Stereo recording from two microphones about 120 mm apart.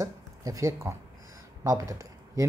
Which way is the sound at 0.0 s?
30° right (ahead or behind).